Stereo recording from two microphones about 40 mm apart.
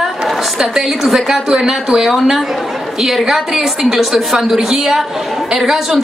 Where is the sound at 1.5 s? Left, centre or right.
Centre.